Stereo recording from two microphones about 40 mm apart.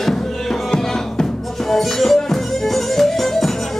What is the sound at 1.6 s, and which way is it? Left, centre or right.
Music, centre.